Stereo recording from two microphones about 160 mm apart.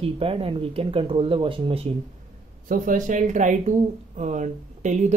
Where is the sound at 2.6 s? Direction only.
60° right (ahead or behind).